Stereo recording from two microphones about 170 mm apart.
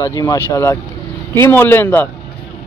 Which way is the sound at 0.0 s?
20° left (ahead or behind).